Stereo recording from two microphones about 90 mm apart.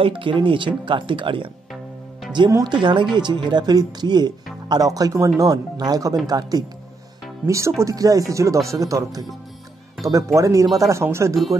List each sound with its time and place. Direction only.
0.0 s speech: 70° right (ahead or behind)
2.6 s speech: 60° right (ahead or behind)
7.4 s speech: 35° right (ahead or behind)